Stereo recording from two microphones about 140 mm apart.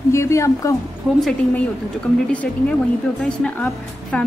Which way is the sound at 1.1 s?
5° right (ahead or behind).